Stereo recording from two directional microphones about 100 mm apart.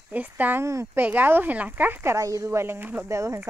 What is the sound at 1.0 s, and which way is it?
Speech, 15° right (ahead or behind).